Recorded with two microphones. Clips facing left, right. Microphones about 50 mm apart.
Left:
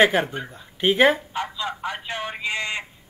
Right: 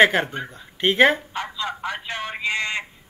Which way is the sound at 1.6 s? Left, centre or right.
Centre.